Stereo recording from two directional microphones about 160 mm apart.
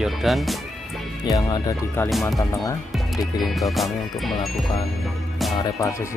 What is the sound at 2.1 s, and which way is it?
Speech, centre (ahead or behind).